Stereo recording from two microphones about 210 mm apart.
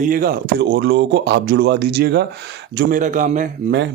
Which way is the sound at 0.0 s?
45° right (ahead or behind).